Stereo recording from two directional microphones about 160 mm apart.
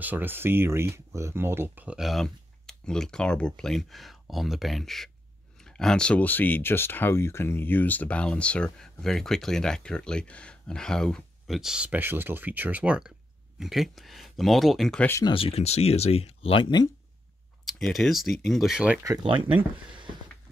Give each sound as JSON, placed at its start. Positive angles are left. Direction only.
{"t": 0.0, "sound": "speech", "side_deg": -10}
{"t": 15.0, "sound": "speech", "side_deg": 20}
{"t": 15.3, "sound": "speech", "side_deg": 35}
{"t": 17.6, "sound": "speech", "side_deg": 0}